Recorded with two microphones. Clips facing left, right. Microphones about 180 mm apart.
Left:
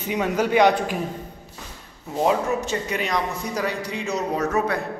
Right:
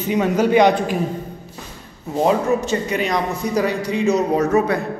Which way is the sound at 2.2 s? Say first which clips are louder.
Right 4 dB; 5° left (ahead or behind).